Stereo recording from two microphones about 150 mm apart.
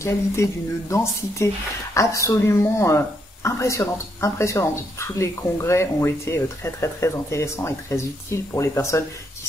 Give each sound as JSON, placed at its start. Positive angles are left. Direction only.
{"t": 0.0, "sound": "speech", "side_deg": 20}